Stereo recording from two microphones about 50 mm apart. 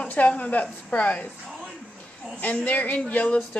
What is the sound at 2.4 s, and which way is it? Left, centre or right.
Speech, left.